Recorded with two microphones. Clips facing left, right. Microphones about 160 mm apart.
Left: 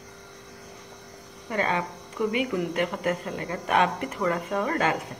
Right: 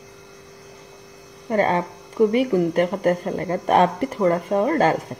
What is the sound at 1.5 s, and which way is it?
Speech, 40° right (ahead or behind).